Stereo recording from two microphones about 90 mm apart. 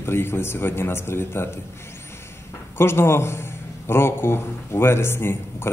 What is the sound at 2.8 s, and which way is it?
A man's voice, 30° left (ahead or behind).